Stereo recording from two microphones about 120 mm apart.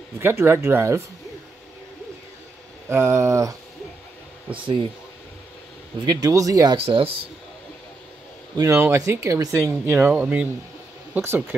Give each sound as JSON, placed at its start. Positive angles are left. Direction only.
{"t": 0.2, "sound": "speech", "side_deg": -20}
{"t": 2.9, "sound": "speech", "side_deg": -20}
{"t": 4.5, "sound": "speech", "side_deg": -45}
{"t": 6.0, "sound": "speech", "side_deg": -30}
{"t": 6.8, "sound": "speech", "side_deg": -50}
{"t": 8.5, "sound": "speech", "side_deg": -25}